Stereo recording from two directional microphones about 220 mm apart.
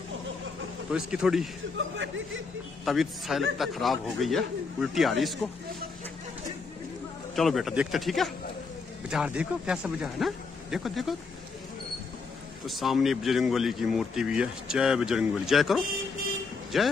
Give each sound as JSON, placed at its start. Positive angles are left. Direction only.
{"t": 0.9, "sound": "speech", "side_deg": -5}
{"t": 1.8, "sound": "speech", "side_deg": -60}
{"t": 2.8, "sound": "speech", "side_deg": 0}
{"t": 7.3, "sound": "speech", "side_deg": 0}
{"t": 12.6, "sound": "speech", "side_deg": 0}